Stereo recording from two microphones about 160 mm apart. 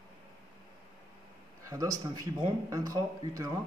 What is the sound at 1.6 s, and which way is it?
Speech, 20° right (ahead or behind).